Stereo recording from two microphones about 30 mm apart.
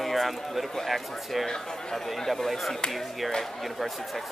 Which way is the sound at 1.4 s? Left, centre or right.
Centre.